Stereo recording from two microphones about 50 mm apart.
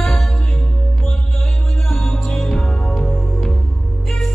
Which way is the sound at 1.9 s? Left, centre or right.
Centre.